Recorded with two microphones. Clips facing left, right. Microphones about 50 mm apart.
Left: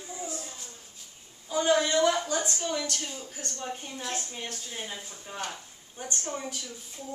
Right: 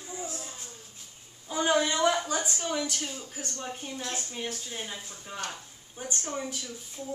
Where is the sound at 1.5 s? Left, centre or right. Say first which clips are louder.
Left 1 dB; centre.